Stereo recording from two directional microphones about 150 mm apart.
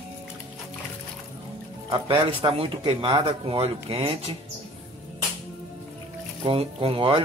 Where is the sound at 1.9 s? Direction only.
35° right (ahead or behind).